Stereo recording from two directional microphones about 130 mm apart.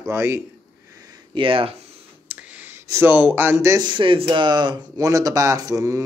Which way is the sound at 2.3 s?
10° right (ahead or behind).